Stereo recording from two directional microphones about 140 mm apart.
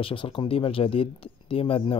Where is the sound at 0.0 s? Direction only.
40° left (ahead or behind).